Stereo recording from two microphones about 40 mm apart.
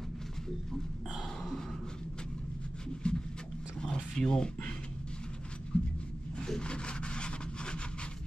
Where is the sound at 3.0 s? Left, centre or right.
Left.